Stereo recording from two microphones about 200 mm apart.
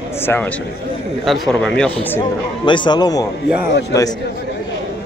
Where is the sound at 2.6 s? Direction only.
25° left (ahead or behind).